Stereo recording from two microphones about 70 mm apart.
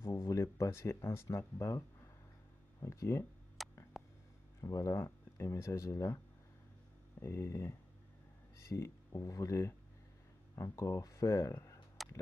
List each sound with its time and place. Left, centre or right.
0.0 s speech: left
3.6 s tick: centre
3.9 s a sound: centre
4.6 s speech: left
7.2 s speech: left
12.0 s a sound: centre